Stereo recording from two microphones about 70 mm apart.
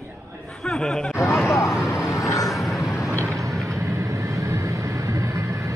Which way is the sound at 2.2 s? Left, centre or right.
Left.